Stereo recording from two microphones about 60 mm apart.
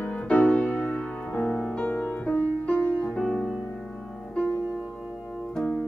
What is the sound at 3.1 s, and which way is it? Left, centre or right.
Music, centre.